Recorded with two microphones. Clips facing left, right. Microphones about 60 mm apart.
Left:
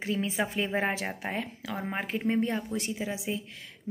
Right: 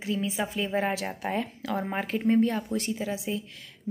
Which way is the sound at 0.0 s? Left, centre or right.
Left.